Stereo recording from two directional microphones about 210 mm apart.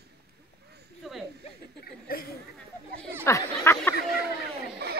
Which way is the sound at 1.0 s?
Centre (ahead or behind).